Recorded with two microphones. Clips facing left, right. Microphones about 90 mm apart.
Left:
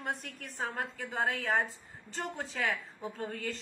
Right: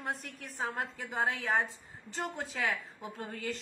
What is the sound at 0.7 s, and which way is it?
A woman's voice, 15° right (ahead or behind).